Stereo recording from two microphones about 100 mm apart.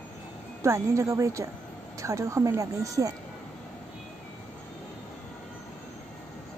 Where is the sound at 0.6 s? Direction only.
30° right (ahead or behind).